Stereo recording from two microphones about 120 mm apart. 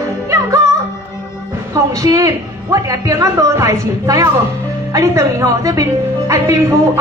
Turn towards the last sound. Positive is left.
turn(degrees=-25)  # may be behind; listen again after turning